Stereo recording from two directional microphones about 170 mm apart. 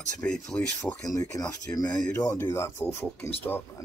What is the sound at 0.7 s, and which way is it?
Speech, 20° left (ahead or behind).